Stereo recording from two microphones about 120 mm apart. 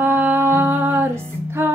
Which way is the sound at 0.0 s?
15° right (ahead or behind).